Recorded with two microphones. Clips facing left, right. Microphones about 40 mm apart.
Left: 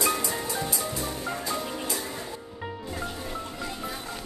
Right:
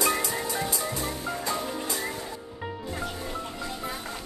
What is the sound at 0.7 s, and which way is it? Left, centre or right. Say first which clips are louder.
Music: right 1 dB; right.